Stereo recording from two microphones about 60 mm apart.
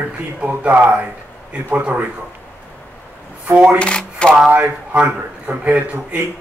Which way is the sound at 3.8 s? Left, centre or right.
Centre.